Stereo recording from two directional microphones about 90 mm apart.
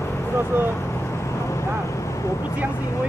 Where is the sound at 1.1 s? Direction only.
30° left (ahead or behind).